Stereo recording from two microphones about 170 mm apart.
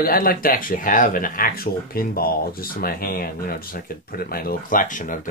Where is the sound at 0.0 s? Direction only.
60° left (ahead or behind).